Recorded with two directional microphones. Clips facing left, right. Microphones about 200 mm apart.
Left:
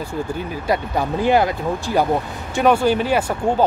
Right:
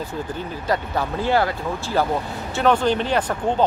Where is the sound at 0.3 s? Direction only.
15° left (ahead or behind).